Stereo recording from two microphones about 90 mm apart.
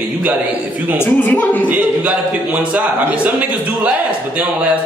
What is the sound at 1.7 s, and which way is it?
A man's voice, 20° right (ahead or behind).